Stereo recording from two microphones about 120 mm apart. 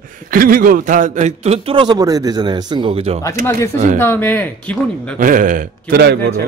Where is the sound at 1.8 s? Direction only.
35° right (ahead or behind); by 3.2 s 50° right (ahead or behind).